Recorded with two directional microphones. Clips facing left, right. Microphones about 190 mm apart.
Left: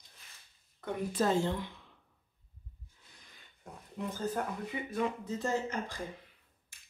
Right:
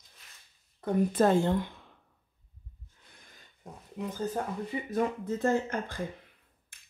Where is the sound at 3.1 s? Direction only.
50° right (ahead or behind).